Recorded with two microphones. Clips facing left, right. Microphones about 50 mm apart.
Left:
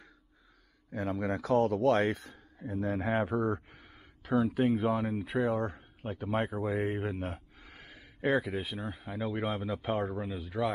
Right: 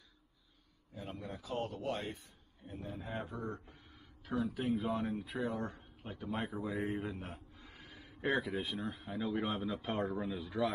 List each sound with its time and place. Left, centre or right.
0.9 s a man's voice: left
3.2 s speech: left
8.0 s speech: left
9.8 s speech: centre